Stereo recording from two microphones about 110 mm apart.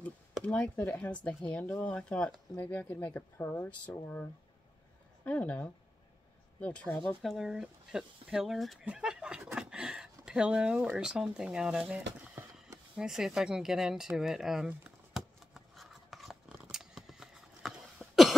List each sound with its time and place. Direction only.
0.0 s speech: 10° left (ahead or behind)
15.1 s scissors: centre (ahead or behind)
16.6 s mechanisms: 5° right (ahead or behind)
17.9 s cough: centre (ahead or behind)